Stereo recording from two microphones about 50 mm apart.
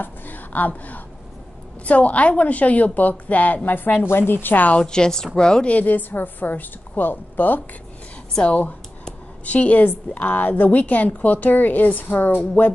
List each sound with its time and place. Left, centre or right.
0.0 s a sound: left
1.9 s a woman's voice: left
4.7 s a woman's voice: centre
5.7 s a woman's voice: left
8.4 s a woman's voice: left